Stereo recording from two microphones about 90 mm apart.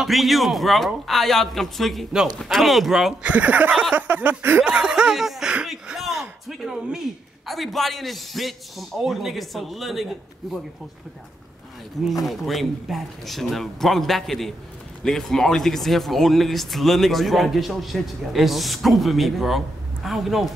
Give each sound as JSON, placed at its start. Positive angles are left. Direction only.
{"t": 0.0, "sound": "speech", "side_deg": 0}
{"t": 3.3, "sound": "speech", "side_deg": -15}
{"t": 12.0, "sound": "speech", "side_deg": 0}